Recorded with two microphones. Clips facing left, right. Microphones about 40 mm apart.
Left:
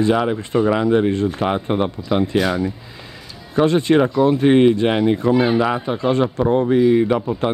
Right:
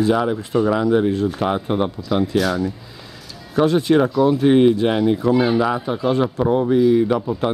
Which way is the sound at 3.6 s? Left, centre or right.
Left.